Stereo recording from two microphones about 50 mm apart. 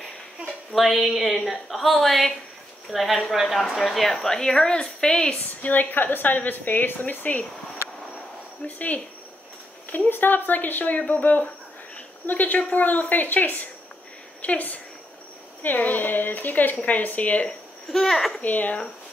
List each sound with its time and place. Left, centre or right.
0.7 s a woman's voice: centre
5.4 s a woman's voice: left
8.6 s a woman's voice: left
9.8 s a woman's voice: left
17.8 s speech: centre
18.4 s a woman's voice: left